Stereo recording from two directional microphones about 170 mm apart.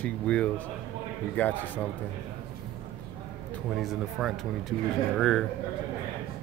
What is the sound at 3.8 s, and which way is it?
Speech, centre (ahead or behind).